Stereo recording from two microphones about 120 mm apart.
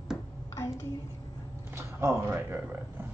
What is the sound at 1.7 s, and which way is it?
Speech, 20° right (ahead or behind).